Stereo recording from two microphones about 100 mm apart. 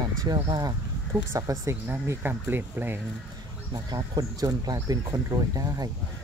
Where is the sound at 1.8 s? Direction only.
20° right (ahead or behind).